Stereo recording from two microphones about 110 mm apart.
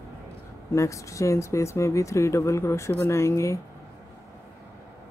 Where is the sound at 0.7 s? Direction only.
30° left (ahead or behind).